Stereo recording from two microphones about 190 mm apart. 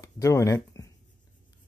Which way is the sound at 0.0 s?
15° left (ahead or behind).